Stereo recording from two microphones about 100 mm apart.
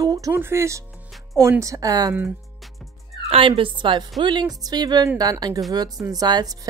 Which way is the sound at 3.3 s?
65° right (ahead or behind).